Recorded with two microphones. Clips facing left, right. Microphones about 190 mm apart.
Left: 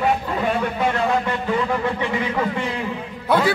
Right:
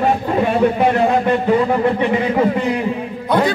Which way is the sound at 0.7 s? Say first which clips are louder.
Right 6 dB; 30° right (ahead or behind).